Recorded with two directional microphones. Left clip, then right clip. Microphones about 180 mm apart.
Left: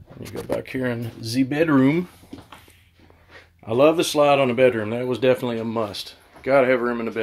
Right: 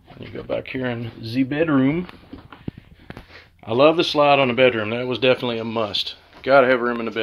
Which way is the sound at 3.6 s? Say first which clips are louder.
Right 1 dB; 10° left (ahead or behind).